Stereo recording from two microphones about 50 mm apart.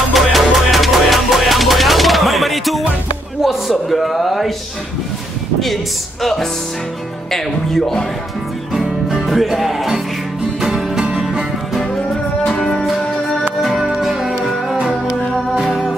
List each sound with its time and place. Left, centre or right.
0.1 s music: centre
3.9 s a sound: centre
6.2 s music: centre
8.7 s music: centre
11.0 s music: centre
12.4 s music: left
13.6 s music: centre
14.8 s music: centre